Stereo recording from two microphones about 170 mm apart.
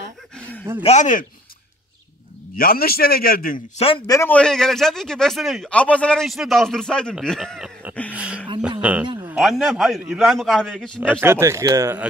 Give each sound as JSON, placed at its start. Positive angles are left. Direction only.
{"t": 0.4, "sound": "a sound", "side_deg": 10}
{"t": 0.8, "sound": "speech", "side_deg": 45}
{"t": 2.5, "sound": "a man's voice", "side_deg": 60}
{"t": 3.7, "sound": "speech", "side_deg": 35}
{"t": 4.1, "sound": "a man's voice", "side_deg": 10}
{"t": 8.1, "sound": "a sound", "side_deg": -5}
{"t": 9.3, "sound": "a man's voice", "side_deg": 0}
{"t": 11.0, "sound": "speech", "side_deg": -10}